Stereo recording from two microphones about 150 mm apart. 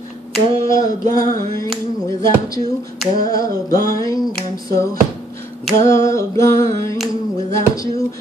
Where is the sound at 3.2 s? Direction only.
25° left (ahead or behind).